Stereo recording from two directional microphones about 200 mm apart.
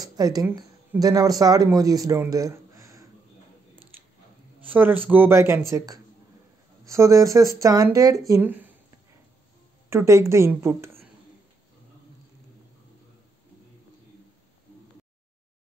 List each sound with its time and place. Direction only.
0.0 s speech: 20° right (ahead or behind)
4.6 s speech: 10° right (ahead or behind)
9.8 s a woman's voice: 15° right (ahead or behind)